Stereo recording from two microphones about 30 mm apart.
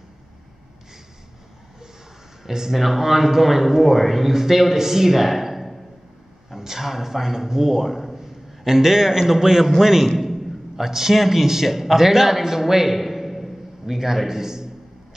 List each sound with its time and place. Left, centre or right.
2.4 s a man's voice: centre
6.5 s a man's voice: centre
12.9 s a sound: centre
13.9 s a man's voice: centre